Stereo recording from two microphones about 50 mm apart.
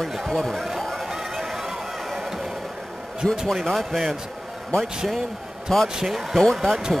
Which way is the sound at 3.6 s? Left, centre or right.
Centre.